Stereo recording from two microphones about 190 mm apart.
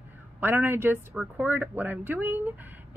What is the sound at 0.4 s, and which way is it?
Speech, 10° right (ahead or behind).